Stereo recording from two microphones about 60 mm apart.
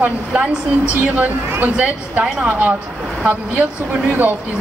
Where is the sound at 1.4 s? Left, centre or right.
Right.